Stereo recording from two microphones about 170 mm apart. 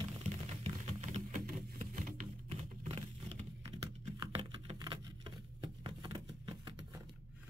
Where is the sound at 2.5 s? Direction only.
35° right (ahead or behind).